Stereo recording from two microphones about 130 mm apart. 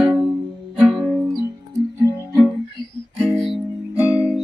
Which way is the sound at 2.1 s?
20° right (ahead or behind).